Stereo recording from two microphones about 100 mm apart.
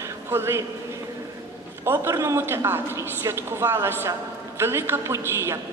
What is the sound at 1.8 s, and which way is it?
A man's voice, 30° right (ahead or behind).